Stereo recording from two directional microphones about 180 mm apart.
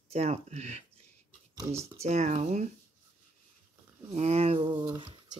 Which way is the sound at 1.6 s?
15° right (ahead or behind).